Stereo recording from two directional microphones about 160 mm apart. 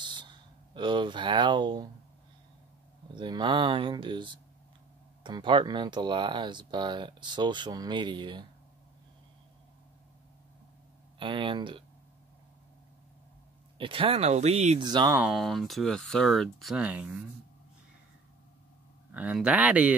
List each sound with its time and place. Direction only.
0.0 s a sound: 30° right (ahead or behind)
0.7 s speech: 30° right (ahead or behind)
3.2 s speech: 30° right (ahead or behind)
11.1 s speech: 30° right (ahead or behind)
13.7 s speech: 35° right (ahead or behind)
14.8 s speech: 25° right (ahead or behind)
15.1 s speech: 5° right (ahead or behind)
19.1 s speech: 10° right (ahead or behind)